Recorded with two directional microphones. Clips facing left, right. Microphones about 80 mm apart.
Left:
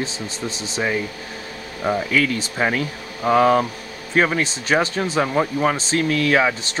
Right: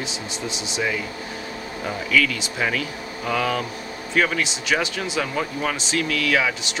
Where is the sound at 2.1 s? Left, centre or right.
Left.